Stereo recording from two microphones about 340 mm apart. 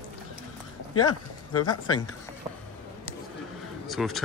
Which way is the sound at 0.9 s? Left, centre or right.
Left.